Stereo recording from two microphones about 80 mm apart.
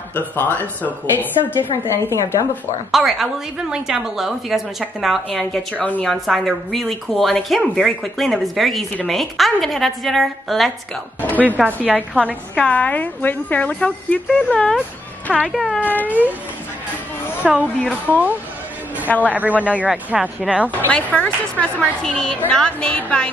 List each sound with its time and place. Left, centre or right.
0.1 s speech: left
1.9 s a woman's voice: left
2.9 s a woman's voice: centre
5.8 s speech: centre
6.0 s a woman's voice: centre
11.1 s speech: left
11.4 s speech: centre
12.5 s a woman's voice: centre
15.5 s a woman's voice: centre
15.8 s speech: left
16.1 s speech: right
17.4 s speech: centre
20.9 s a woman's voice: centre